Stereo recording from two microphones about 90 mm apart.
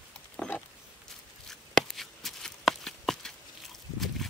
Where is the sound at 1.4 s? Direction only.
5° left (ahead or behind).